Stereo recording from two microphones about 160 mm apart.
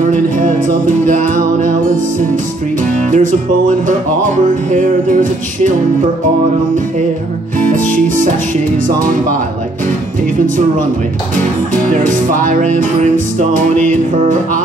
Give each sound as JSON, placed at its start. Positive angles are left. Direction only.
{"t": 0.5, "sound": "music", "side_deg": -55}
{"t": 3.1, "sound": "music", "side_deg": -55}
{"t": 11.9, "sound": "music", "side_deg": -55}